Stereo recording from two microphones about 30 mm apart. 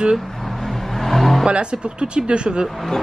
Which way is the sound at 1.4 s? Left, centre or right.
Right.